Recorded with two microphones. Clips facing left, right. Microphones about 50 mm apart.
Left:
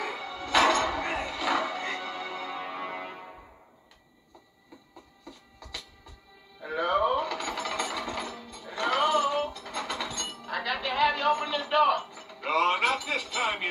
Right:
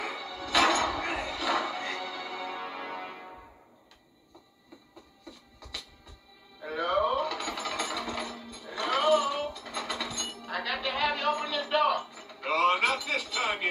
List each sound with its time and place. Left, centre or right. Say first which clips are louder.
0.5 s music: left 2 dB; left
6.6 s jackhammer: left 2 dB; left
8.6 s music: even; left
10.5 s a sound: left 2 dB; left